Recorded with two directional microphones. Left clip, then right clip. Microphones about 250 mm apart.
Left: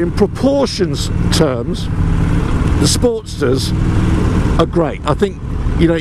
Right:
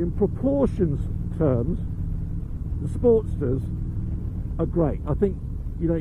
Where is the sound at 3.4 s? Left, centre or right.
Centre.